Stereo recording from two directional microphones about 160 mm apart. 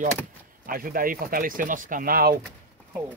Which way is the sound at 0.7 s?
65° right (ahead or behind).